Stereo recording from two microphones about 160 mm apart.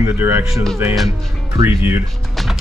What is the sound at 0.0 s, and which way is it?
Speech, 15° right (ahead or behind).